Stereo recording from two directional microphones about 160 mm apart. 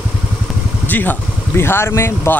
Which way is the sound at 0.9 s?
10° left (ahead or behind).